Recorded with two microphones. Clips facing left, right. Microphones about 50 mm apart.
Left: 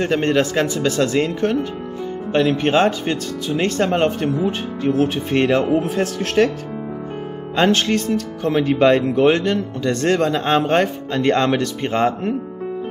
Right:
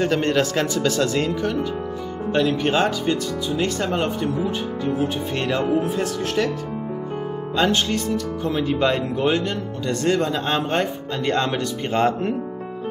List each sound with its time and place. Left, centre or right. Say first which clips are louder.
0.0 s a man's voice: left 2 dB; left
1.3 s speech: left 3 dB; left
5.3 s speech: left 6 dB; left
7.5 s speech: left 4 dB; left
10.8 s speech: left 5 dB; left
11.2 s speech: left 5 dB; left